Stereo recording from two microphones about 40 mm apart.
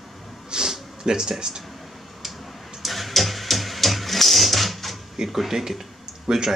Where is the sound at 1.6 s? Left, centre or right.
Centre.